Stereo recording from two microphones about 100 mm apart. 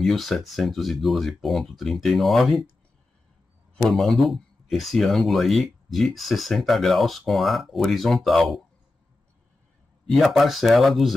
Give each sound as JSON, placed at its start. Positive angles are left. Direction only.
{"t": 0.0, "sound": "speech", "side_deg": 0}
{"t": 3.7, "sound": "speech", "side_deg": 0}
{"t": 10.1, "sound": "speech", "side_deg": 0}